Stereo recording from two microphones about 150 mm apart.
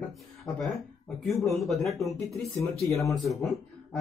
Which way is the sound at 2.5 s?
20° left (ahead or behind).